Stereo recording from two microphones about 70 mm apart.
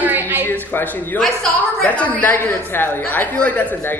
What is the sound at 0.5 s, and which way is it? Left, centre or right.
A man's voice, left.